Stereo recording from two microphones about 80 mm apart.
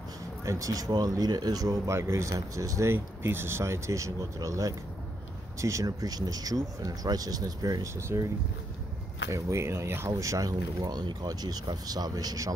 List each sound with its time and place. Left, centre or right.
0.5 s speech: right
7.9 s speech: right
9.3 s speech: right